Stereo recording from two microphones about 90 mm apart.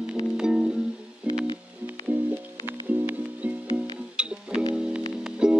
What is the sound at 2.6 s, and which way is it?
Music, 20° right (ahead or behind).